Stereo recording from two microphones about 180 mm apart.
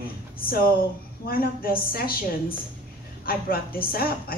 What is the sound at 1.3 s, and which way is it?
Speech, 55° left (ahead or behind).